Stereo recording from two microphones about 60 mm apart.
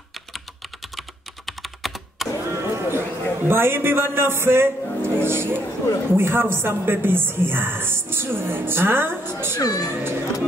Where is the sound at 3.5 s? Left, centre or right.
Right.